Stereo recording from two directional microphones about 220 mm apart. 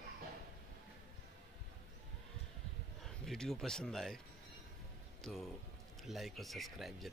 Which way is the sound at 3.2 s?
Centre (ahead or behind).